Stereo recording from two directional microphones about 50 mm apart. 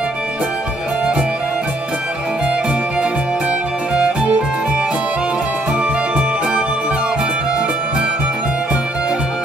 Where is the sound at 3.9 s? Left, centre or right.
Right.